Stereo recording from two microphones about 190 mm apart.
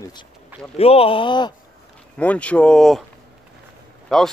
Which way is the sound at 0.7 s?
30° left (ahead or behind).